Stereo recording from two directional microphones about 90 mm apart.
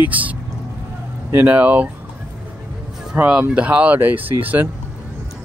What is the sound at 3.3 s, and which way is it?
Speech, 15° right (ahead or behind).